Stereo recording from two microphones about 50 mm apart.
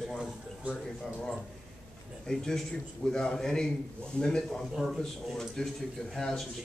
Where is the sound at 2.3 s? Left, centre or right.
Centre.